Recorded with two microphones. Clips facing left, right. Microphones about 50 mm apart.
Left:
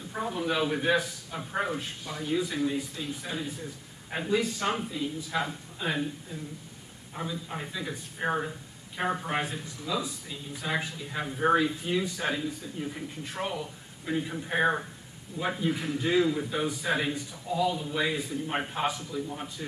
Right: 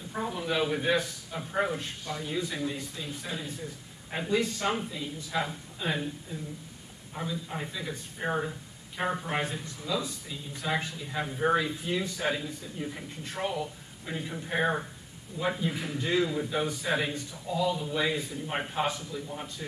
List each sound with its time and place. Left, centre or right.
0.1 s a man's voice: centre